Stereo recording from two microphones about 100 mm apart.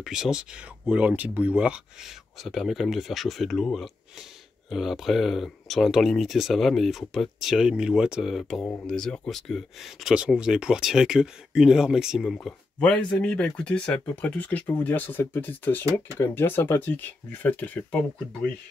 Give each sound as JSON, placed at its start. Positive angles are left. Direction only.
{"t": 0.0, "sound": "speech", "side_deg": -5}
{"t": 2.4, "sound": "speech", "side_deg": 0}
{"t": 12.4, "sound": "speech", "side_deg": 10}